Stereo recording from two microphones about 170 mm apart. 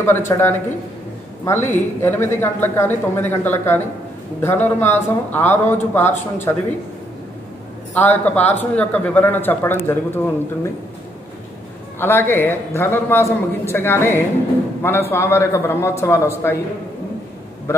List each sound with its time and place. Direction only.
0.0 s speech: 15° left (ahead or behind)
7.9 s speech: 10° left (ahead or behind)
12.0 s speech: 15° left (ahead or behind)
17.7 s speech: 15° left (ahead or behind)